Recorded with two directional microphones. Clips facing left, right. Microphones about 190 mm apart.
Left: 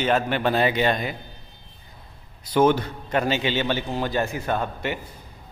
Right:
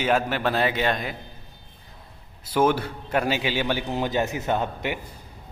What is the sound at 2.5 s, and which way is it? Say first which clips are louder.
Speech: left 2 dB; 5° right (ahead or behind).